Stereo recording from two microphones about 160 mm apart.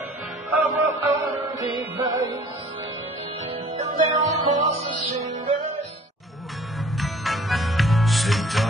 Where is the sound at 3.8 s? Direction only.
45° right (ahead or behind).